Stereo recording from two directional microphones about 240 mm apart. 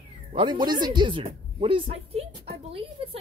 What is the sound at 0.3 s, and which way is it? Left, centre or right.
Speech, centre.